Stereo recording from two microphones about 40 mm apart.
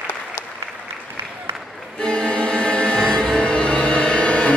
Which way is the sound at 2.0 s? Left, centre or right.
Left.